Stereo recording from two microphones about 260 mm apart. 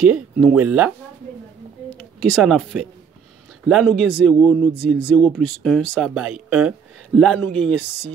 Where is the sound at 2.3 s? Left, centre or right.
Centre.